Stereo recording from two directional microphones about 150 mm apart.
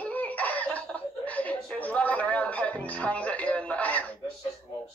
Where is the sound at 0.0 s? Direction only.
10° left (ahead or behind).